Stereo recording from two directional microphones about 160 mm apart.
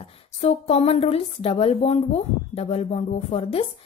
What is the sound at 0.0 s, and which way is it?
A woman's voice, 35° left (ahead or behind).